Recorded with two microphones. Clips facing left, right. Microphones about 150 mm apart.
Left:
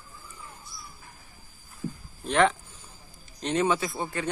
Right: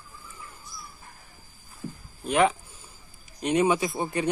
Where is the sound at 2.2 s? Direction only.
10° right (ahead or behind).